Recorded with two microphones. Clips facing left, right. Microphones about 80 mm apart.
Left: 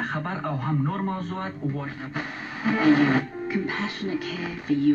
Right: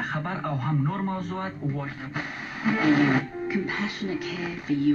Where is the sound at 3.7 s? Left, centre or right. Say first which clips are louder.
Left 1 dB; left.